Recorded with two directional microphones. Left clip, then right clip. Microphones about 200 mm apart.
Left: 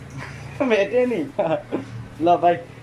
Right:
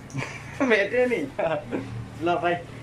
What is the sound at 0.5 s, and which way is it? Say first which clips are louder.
Speech: left 2 dB; 5° left (ahead or behind).